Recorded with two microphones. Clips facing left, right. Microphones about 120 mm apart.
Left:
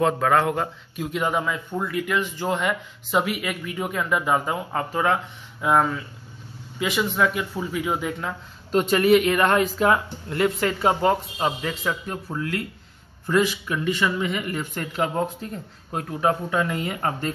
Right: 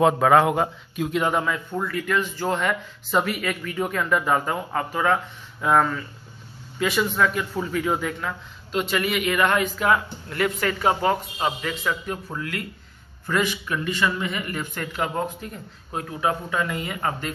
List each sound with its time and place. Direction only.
0.0 s a man's voice: 10° right (ahead or behind)
0.9 s a man's voice: centre (ahead or behind)
1.8 s speech: 20° left (ahead or behind)
4.7 s speech: 25° left (ahead or behind)
5.6 s speech: 15° left (ahead or behind)
8.7 s speech: 40° left (ahead or behind)